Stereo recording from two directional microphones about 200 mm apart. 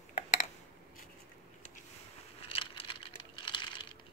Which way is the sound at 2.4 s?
30° left (ahead or behind).